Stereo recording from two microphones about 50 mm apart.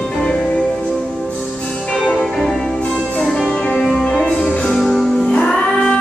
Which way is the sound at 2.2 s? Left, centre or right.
Centre.